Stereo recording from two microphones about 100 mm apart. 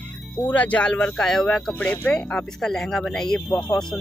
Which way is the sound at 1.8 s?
15° left (ahead or behind).